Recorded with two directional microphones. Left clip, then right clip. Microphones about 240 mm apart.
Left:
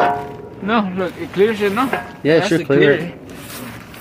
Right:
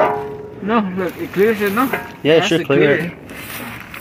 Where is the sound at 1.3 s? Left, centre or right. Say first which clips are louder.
Even; right.